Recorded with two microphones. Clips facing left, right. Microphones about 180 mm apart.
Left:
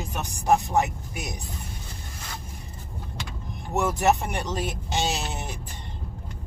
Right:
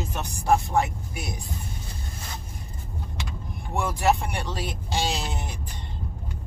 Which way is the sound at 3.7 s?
20° left (ahead or behind).